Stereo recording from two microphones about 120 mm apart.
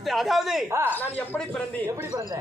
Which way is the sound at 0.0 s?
Centre (ahead or behind).